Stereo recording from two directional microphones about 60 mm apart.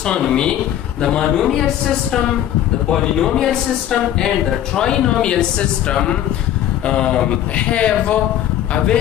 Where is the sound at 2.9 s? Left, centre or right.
Centre.